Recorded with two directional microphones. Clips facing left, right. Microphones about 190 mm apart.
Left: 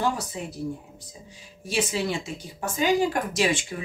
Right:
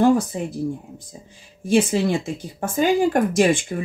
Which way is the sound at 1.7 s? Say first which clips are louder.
Right 8 dB; 50° right (ahead or behind).